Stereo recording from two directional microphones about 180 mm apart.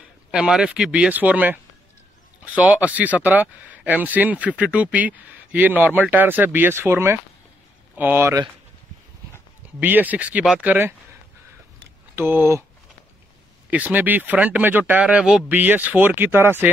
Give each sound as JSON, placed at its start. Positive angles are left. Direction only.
{"t": 0.3, "sound": "speech", "side_deg": -5}
{"t": 9.8, "sound": "speech", "side_deg": -10}
{"t": 12.2, "sound": "speech", "side_deg": -10}
{"t": 13.7, "sound": "speech", "side_deg": -10}